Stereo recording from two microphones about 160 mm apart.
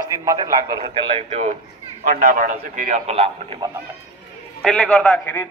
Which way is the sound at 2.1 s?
55° right (ahead or behind).